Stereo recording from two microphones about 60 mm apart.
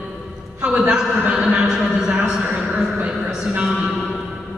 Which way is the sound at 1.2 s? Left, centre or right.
Right.